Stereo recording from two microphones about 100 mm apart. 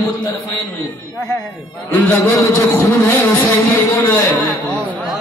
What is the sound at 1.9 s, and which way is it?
Speech, 15° left (ahead or behind).